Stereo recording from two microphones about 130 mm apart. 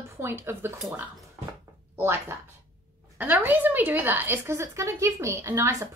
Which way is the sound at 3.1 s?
15° right (ahead or behind).